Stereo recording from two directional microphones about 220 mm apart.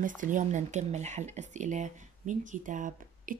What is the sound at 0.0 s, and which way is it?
Speech, 35° right (ahead or behind).